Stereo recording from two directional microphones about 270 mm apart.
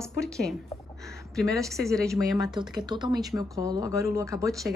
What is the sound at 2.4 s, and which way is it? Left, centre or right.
A woman's voice, centre.